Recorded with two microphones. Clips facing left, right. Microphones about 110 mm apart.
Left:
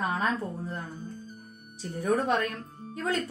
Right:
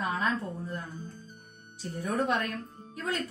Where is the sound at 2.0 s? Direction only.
30° left (ahead or behind).